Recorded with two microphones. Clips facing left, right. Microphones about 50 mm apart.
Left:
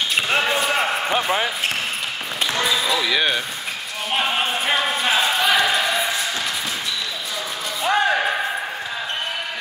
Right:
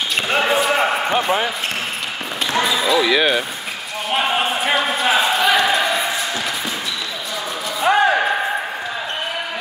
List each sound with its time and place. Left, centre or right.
0.1 s basketball bounce: centre
2.5 s speech: centre
4.1 s a sound: centre
7.8 s slam: right